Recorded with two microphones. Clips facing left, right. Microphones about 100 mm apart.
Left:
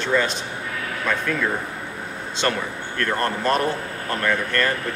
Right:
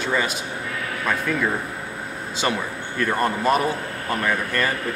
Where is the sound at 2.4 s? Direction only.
10° right (ahead or behind).